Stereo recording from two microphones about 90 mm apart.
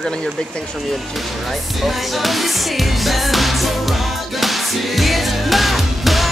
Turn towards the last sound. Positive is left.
turn(degrees=0)  # may be behind; listen again after turning